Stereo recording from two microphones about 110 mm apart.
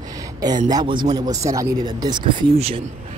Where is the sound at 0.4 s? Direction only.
35° right (ahead or behind).